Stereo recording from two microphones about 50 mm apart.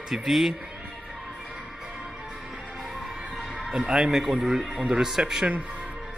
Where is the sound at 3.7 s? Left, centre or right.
Centre.